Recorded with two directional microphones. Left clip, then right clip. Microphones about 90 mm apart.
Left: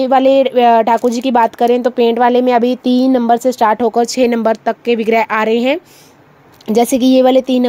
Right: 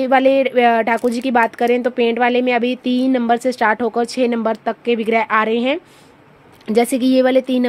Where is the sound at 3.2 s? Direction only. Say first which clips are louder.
Left 4 dB; 20° left (ahead or behind).